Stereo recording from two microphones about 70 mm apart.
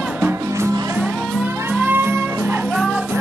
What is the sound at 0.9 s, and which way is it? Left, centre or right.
Music, right.